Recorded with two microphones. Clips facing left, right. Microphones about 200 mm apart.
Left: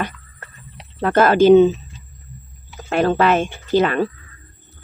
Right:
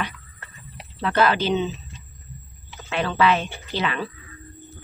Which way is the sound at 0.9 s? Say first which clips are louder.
Left 6 dB; 50° left (ahead or behind).